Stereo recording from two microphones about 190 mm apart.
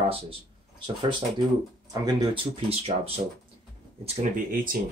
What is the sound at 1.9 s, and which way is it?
Speech, 20° right (ahead or behind).